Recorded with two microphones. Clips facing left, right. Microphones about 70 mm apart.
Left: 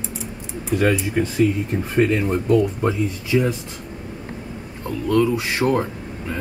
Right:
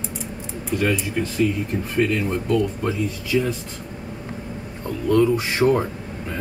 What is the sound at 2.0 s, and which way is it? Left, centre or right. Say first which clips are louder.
Speech: left 3 dB; left.